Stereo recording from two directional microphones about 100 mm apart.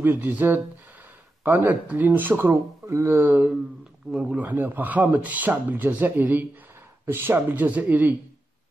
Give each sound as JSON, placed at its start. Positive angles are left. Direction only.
{"t": 0.0, "sound": "speech", "side_deg": -20}